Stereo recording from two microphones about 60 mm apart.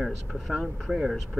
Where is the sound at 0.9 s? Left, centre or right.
Centre.